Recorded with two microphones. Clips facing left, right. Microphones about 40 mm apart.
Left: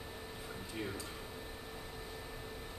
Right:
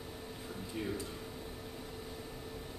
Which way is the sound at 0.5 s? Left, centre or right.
Centre.